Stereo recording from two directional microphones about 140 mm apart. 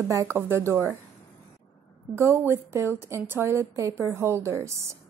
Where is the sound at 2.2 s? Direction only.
15° right (ahead or behind).